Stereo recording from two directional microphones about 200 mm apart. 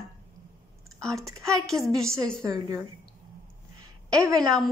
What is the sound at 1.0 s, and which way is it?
A woman's voice, 15° right (ahead or behind).